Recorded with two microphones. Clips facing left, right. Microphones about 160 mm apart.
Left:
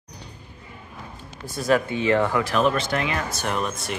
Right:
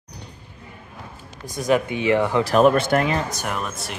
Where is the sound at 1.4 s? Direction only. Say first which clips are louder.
Right 1 dB; 15° right (ahead or behind).